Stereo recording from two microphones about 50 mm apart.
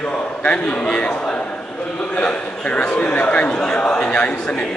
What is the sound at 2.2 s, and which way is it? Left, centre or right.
A man's voice, left.